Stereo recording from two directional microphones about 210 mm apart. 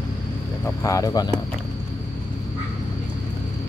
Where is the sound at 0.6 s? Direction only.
15° left (ahead or behind).